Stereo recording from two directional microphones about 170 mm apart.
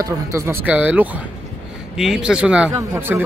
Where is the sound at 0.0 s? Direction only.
15° right (ahead or behind).